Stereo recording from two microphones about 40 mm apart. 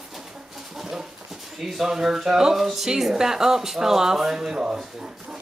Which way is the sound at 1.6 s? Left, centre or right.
Centre.